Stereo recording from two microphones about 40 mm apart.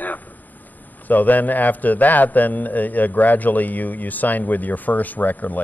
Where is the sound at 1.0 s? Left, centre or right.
Left.